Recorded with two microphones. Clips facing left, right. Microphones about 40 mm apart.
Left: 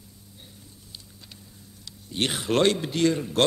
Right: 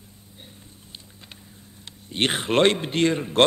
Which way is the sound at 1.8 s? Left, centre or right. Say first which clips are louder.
Right 3 dB; right.